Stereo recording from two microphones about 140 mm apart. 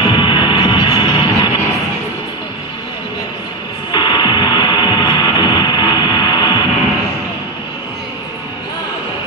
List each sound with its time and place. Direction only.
0.1 s hum: 35° left (ahead or behind)
3.9 s music: 30° left (ahead or behind)